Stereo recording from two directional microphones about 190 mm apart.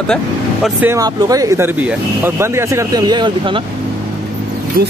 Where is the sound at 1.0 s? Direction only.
20° right (ahead or behind).